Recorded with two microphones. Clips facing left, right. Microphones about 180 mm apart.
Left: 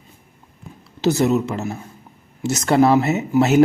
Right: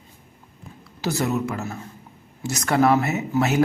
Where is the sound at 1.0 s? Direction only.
20° left (ahead or behind).